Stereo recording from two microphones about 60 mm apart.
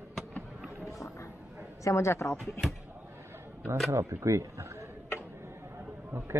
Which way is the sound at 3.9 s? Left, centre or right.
Right.